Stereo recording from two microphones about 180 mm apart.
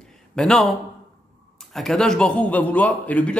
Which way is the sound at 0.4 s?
Centre (ahead or behind).